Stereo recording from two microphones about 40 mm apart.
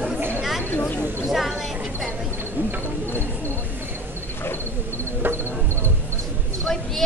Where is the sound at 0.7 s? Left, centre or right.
Left.